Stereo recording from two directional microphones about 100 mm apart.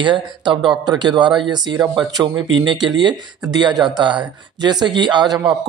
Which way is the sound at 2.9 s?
50° right (ahead or behind).